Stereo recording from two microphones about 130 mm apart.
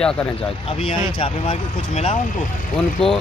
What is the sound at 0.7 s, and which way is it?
Speech, 45° left (ahead or behind).